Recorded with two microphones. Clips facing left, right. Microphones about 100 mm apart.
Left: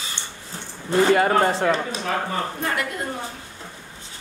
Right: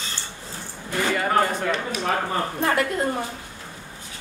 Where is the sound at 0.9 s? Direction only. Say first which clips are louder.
Left 6 dB; 30° left (ahead or behind).